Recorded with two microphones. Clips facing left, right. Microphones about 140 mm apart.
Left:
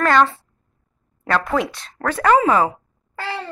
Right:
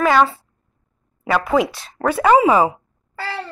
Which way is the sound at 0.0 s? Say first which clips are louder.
Right 1 dB; 5° right (ahead or behind).